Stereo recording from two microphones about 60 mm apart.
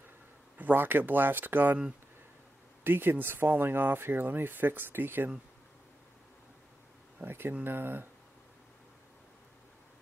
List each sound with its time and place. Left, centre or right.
0.6 s speech: right
2.8 s speech: right
7.2 s speech: right